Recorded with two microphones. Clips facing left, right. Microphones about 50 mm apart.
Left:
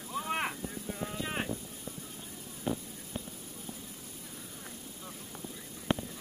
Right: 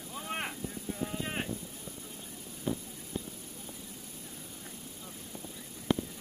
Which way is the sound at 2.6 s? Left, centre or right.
Left.